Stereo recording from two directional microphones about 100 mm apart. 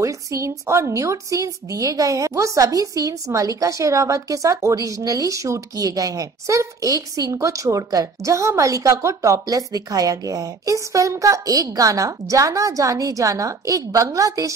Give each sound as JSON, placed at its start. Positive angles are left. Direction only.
{"t": 0.0, "sound": "a woman's voice", "side_deg": -30}